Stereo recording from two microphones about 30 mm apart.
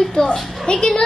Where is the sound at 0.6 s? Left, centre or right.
Left.